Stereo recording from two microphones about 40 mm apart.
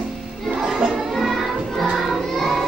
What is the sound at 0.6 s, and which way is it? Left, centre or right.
Crowd, centre.